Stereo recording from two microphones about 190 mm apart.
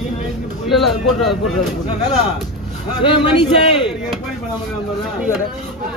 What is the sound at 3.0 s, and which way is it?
Speech, 25° left (ahead or behind).